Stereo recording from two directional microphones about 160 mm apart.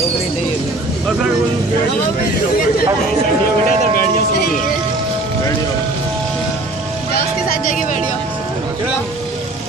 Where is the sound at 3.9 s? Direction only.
65° left (ahead or behind).